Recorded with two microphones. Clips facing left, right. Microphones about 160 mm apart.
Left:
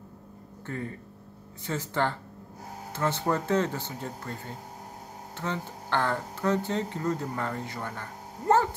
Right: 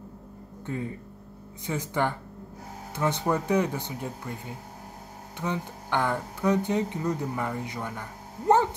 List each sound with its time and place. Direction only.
0.7 s speech: 15° right (ahead or behind)